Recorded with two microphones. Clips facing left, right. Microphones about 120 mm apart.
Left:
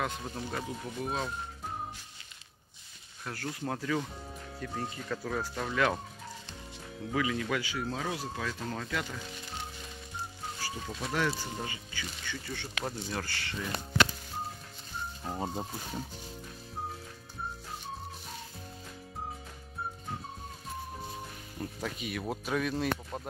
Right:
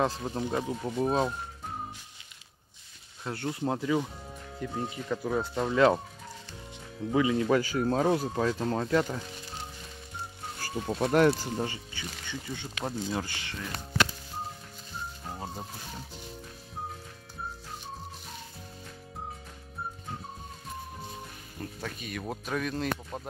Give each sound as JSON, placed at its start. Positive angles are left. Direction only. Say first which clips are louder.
{"t": 0.0, "sound": "speech", "louder": "right 6 dB", "side_deg": -30}
{"t": 0.8, "sound": "speech", "louder": "right 9 dB", "side_deg": -35}
{"t": 3.3, "sound": "speech", "louder": "right 5 dB", "side_deg": -25}
{"t": 7.1, "sound": "speech", "louder": "right 6 dB", "side_deg": -25}
{"t": 7.5, "sound": "speech", "louder": "right 8 dB", "side_deg": -45}
{"t": 10.6, "sound": "speech", "louder": "right 10 dB", "side_deg": -50}
{"t": 11.2, "sound": "speech", "louder": "right 8 dB", "side_deg": -30}
{"t": 15.3, "sound": "speech", "louder": "left 6 dB", "side_deg": 20}
{"t": 21.5, "sound": "speech", "louder": "left 1 dB", "side_deg": 5}